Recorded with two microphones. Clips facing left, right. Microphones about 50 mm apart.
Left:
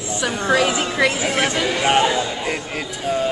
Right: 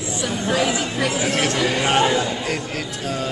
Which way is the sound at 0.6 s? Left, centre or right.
Left.